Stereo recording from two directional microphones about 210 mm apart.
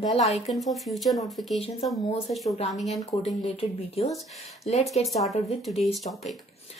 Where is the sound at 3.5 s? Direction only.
30° left (ahead or behind).